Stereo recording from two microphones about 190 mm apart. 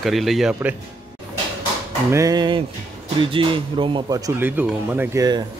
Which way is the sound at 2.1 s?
20° right (ahead or behind).